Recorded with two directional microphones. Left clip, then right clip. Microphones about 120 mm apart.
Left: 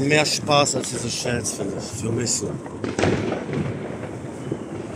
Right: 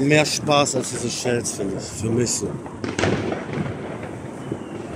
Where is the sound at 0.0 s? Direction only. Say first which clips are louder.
Right 1 dB; 60° right (ahead or behind).